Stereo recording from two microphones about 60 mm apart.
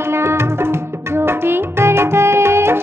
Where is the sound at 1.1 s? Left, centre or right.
Right.